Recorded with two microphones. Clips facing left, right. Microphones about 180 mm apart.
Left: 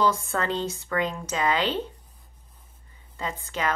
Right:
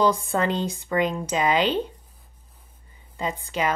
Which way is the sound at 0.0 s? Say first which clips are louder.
Right 3 dB; 15° right (ahead or behind).